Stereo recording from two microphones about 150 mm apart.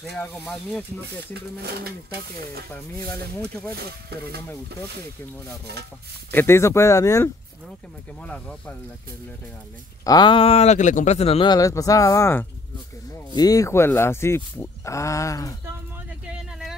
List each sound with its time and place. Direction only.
0.0 s speech: 5° left (ahead or behind)
1.6 s speech: 90° right
3.1 s speech: 20° left (ahead or behind)
6.3 s speech: 15° left (ahead or behind)
8.2 s speech: 10° left (ahead or behind)
10.0 s speech: 30° left (ahead or behind)
11.5 s speech: 20° left (ahead or behind)
16.3 s vehicle: 5° right (ahead or behind)